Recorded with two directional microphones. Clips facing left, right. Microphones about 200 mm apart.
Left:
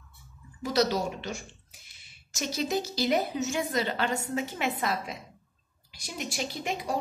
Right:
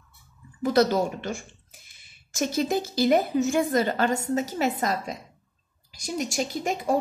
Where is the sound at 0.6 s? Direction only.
50° right (ahead or behind).